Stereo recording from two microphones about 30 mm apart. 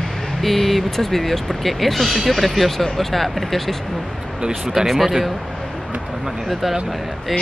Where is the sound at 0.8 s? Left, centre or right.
Centre.